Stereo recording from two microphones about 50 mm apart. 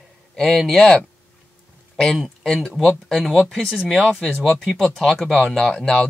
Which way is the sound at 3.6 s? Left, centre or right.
Centre.